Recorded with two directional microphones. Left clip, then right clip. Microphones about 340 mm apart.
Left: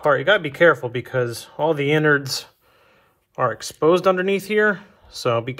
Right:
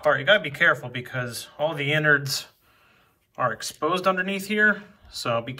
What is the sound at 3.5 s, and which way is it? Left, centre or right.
Speech, centre.